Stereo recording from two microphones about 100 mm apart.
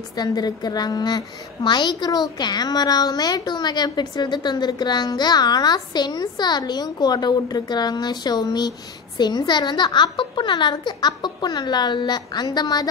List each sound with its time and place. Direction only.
0.2 s a woman's voice: 40° left (ahead or behind)